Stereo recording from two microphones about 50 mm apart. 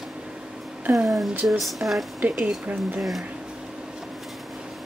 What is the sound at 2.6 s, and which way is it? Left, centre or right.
Speech, right.